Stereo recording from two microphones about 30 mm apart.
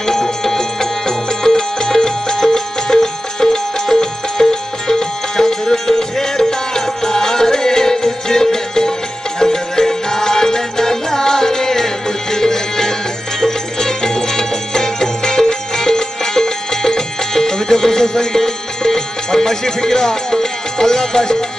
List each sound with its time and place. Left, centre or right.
0.0 s music: centre